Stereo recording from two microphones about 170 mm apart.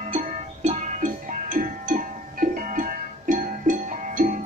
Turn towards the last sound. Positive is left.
turn(degrees=-50)  # may be behind; listen again after turning